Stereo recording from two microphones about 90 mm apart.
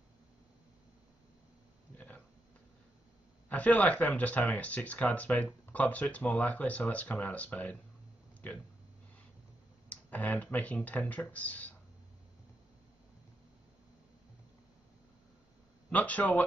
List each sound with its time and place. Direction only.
2.0 s a sound: 15° left (ahead or behind)
3.4 s speech: 15° left (ahead or behind)
9.8 s speech: 20° left (ahead or behind)
15.9 s speech: 15° left (ahead or behind)